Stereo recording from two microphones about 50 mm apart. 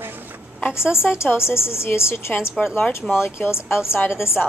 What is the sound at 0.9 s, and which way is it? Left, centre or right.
Speech, centre.